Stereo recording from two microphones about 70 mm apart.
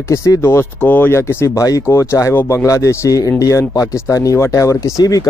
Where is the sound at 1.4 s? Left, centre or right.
Left.